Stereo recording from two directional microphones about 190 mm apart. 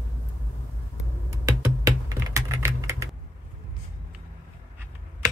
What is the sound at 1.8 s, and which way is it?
Computer keyboard, 15° right (ahead or behind).